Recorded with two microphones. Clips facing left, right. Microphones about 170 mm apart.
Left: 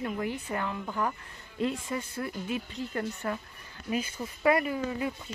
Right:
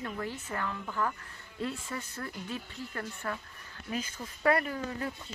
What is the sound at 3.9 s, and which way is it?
Speech, 10° left (ahead or behind).